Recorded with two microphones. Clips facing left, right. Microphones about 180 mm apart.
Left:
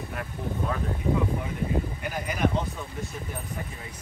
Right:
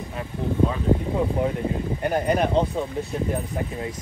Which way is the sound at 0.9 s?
20° right (ahead or behind).